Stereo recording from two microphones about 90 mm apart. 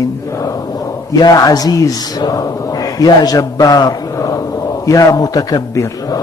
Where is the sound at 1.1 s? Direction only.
45° left (ahead or behind).